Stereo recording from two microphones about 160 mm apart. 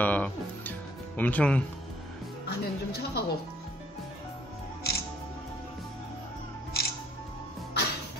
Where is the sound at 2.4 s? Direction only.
80° left.